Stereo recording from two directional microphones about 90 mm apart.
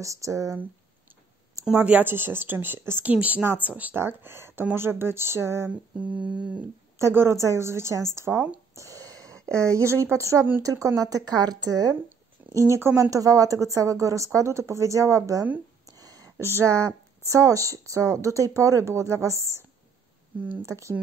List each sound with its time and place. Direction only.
0.0 s speech: 35° right (ahead or behind)
1.7 s speech: 15° right (ahead or behind)
5.7 s humming: 15° right (ahead or behind)
7.0 s speech: 30° right (ahead or behind)
10.6 s a woman's voice: 40° right (ahead or behind)
12.5 s speech: 30° right (ahead or behind)
16.0 s a sound: 40° right (ahead or behind)
16.8 s speech: 35° right (ahead or behind)
20.6 s speech: 35° right (ahead or behind)